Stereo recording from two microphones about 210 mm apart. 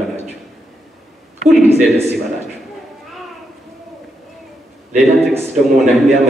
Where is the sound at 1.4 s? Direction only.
30° right (ahead or behind).